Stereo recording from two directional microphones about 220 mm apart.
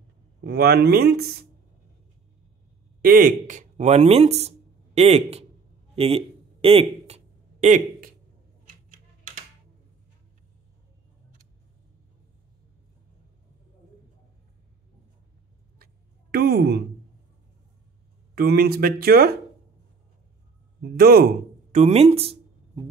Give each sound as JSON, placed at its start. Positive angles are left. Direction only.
{"t": 0.4, "sound": "speech", "side_deg": -45}
{"t": 3.0, "sound": "speech", "side_deg": -40}
{"t": 8.6, "sound": "typewriter", "side_deg": -35}
{"t": 15.8, "sound": "a sound", "side_deg": -45}
{"t": 18.3, "sound": "speech", "side_deg": -45}
{"t": 20.8, "sound": "speech", "side_deg": -45}
{"t": 21.7, "sound": "speech", "side_deg": -30}